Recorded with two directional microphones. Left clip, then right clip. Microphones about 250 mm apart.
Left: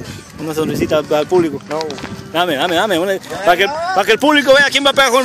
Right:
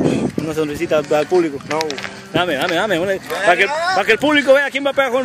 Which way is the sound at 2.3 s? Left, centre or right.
Centre.